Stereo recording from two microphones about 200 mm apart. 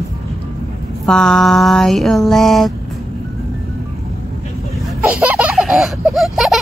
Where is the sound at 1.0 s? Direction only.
5° left (ahead or behind).